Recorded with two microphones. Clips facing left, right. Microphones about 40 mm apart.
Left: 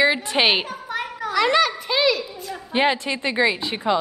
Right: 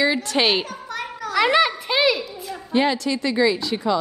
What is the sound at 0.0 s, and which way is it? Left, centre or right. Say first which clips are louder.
A child's voice: left 1 dB; left.